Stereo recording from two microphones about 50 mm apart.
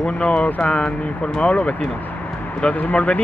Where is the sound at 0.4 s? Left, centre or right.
Left.